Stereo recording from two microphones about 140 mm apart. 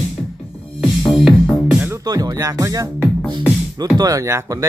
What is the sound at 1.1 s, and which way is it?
Music, centre (ahead or behind).